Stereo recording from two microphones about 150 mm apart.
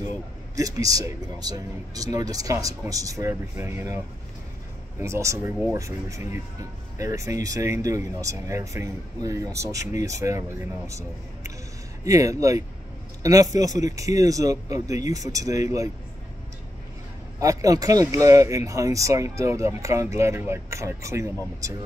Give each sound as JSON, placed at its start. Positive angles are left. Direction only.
{"t": 0.6, "sound": "speech", "side_deg": -25}
{"t": 17.4, "sound": "speech", "side_deg": -20}